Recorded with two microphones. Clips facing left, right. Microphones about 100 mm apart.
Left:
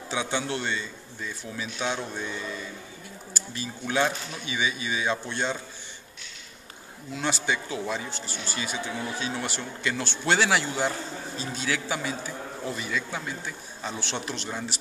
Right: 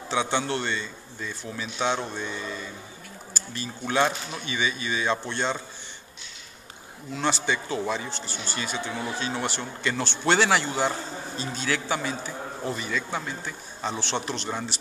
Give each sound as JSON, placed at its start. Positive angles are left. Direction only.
{"t": 0.1, "sound": "speech", "side_deg": 5}
{"t": 3.3, "sound": "a sound", "side_deg": 5}
{"t": 4.0, "sound": "speech", "side_deg": -20}
{"t": 4.5, "sound": "speech", "side_deg": 5}
{"t": 7.2, "sound": "speech", "side_deg": 5}